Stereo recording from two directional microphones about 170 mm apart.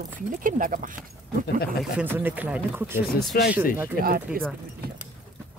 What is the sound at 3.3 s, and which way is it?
Speech, 60° left (ahead or behind).